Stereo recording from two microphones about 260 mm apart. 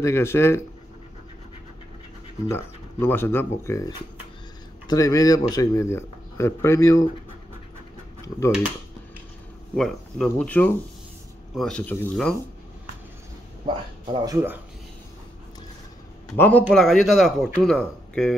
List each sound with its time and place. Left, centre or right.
0.0 s speech: centre
2.4 s speech: centre
9.8 s a man's voice: centre
14.2 s speech: centre
16.3 s a man's voice: centre